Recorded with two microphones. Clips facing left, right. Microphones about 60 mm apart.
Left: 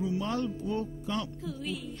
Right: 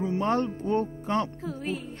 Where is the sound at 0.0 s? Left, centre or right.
Right.